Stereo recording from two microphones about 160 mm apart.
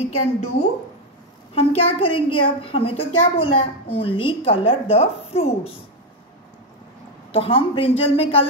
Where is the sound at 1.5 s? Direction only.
35° left (ahead or behind).